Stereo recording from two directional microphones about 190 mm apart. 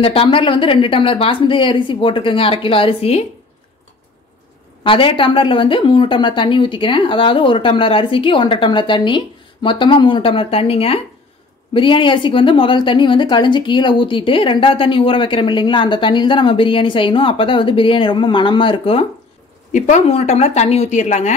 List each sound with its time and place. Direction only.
0.0 s a woman's voice: 30° left (ahead or behind)
4.8 s a woman's voice: 25° left (ahead or behind)